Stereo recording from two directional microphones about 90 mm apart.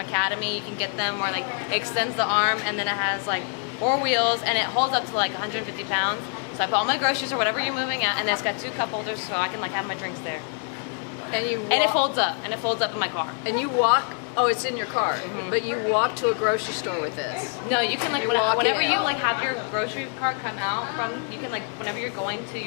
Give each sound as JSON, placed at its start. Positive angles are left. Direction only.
{"t": 0.1, "sound": "a woman's voice", "side_deg": 15}
{"t": 11.3, "sound": "a woman's voice", "side_deg": 15}